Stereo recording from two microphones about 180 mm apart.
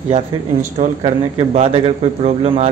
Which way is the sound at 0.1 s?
40° right (ahead or behind).